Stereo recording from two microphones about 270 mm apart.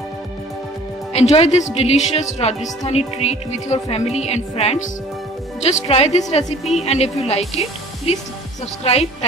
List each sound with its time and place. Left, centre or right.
1.3 s speech: left